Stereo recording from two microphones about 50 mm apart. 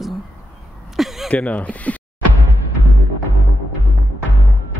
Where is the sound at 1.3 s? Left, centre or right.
Left.